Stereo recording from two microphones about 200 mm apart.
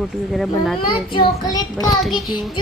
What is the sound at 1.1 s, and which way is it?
Speech, 20° left (ahead or behind).